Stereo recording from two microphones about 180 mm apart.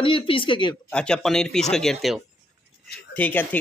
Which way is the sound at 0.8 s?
5° left (ahead or behind).